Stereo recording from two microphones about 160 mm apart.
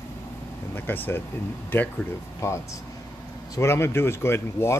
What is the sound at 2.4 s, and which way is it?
Speech, 15° left (ahead or behind).